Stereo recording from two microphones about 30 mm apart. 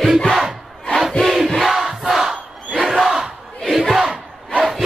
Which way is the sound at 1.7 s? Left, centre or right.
Centre.